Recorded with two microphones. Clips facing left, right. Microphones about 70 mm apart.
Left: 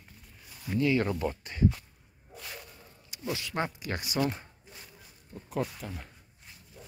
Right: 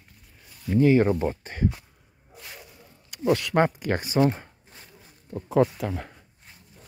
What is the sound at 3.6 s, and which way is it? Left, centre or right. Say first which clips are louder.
Speech: right 10 dB; right.